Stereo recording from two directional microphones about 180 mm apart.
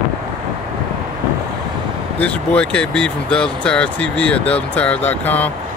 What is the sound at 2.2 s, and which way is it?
Speech, 5° left (ahead or behind).